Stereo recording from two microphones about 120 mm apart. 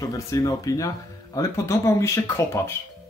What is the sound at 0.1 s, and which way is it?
Speech, 30° left (ahead or behind).